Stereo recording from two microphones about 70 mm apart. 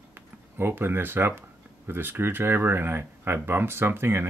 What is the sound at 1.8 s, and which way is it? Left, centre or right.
Speech, right.